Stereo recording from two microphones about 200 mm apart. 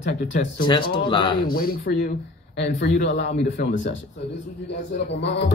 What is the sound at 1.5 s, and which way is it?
Speech, 45° left (ahead or behind).